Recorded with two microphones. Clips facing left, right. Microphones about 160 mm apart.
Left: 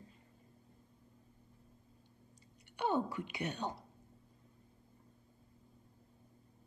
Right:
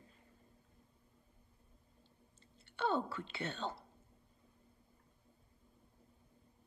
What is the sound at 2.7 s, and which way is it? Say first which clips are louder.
Speech: left 1 dB; 15° left (ahead or behind).